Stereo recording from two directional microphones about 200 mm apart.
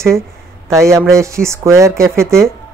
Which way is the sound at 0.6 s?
15° right (ahead or behind).